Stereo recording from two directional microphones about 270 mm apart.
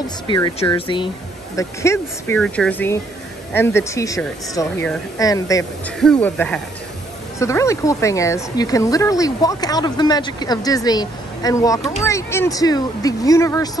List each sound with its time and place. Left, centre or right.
0.3 s speech: centre